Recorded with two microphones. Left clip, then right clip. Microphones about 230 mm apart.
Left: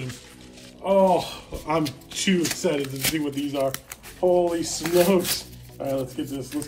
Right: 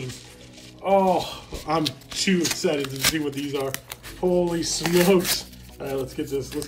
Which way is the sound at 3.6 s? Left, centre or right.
Right.